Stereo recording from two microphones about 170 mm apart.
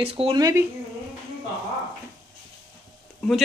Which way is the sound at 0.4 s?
20° right (ahead or behind).